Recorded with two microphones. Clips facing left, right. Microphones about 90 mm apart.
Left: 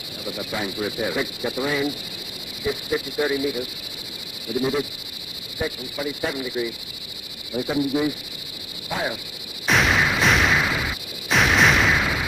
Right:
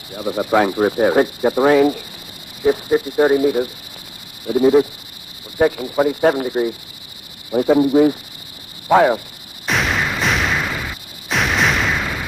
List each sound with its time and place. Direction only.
0.1 s speech: 45° right (ahead or behind)
2.6 s speech: 45° right (ahead or behind)
5.6 s speech: 65° right (ahead or behind); by 8.2 s 45° right (ahead or behind)
8.9 s speech: 80° right
9.7 s artillery fire: centre (ahead or behind)